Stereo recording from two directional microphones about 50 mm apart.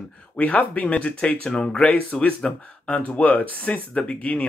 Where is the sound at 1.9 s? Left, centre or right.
Left.